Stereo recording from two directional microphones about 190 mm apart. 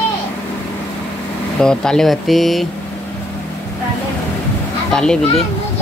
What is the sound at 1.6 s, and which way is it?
Speech, 5° left (ahead or behind).